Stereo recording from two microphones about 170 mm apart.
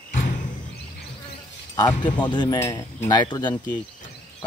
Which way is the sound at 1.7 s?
20° left (ahead or behind).